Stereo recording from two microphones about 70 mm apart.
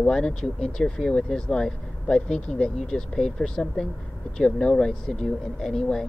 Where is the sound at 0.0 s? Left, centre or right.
Centre.